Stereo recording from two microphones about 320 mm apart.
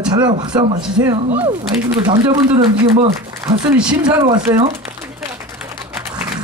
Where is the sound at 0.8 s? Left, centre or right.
Centre.